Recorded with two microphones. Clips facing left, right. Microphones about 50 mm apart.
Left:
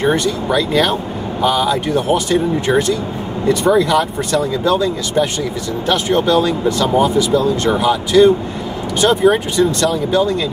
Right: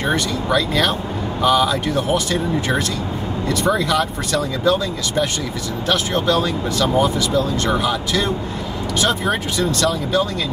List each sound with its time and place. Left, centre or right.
0.1 s speech: centre